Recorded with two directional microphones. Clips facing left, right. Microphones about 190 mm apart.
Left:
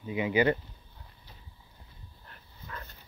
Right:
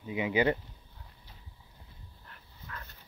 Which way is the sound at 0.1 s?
20° right (ahead or behind).